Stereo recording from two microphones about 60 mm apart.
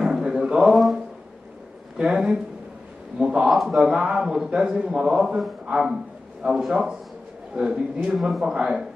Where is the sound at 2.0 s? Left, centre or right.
Centre.